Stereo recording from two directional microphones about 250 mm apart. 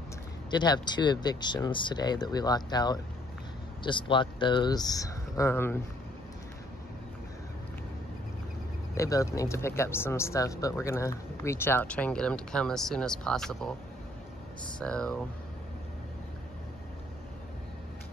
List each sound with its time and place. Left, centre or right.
0.5 s speech: centre
8.9 s speech: centre
14.8 s speech: centre